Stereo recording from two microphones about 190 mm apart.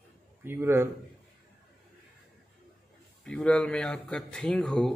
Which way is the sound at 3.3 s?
5° left (ahead or behind).